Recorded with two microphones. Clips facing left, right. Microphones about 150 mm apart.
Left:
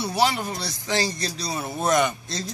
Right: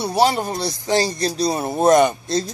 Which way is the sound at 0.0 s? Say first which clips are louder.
Right 5 dB; 35° right (ahead or behind).